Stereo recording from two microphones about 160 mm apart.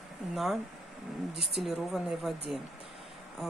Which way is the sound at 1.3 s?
35° left (ahead or behind).